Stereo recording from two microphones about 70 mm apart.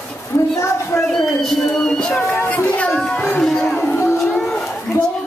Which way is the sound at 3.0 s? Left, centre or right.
Centre.